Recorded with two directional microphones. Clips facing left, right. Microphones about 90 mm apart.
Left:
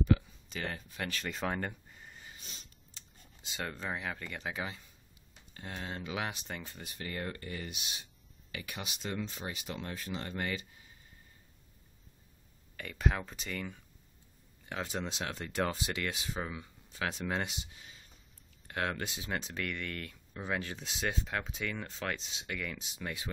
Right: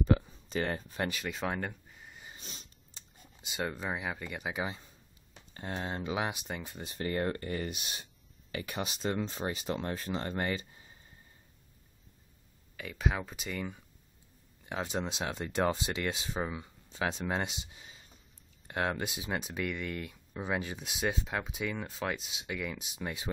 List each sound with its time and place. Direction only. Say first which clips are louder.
0.0 s a sound: right 1 dB; 35° right (ahead or behind)
1.1 s speech: right 1 dB; 5° right (ahead or behind)
2.4 s a sound: right 3 dB; 45° right (ahead or behind)
3.4 s speech: right 3 dB; 15° right (ahead or behind)
5.5 s speech: right 5 dB; 30° right (ahead or behind); by 6.8 s 15° right (ahead or behind)
6.8 s speech: right 9 dB; 35° right (ahead or behind)
12.7 s speech: even; 5° right (ahead or behind); by 23.3 s 25° right (ahead or behind)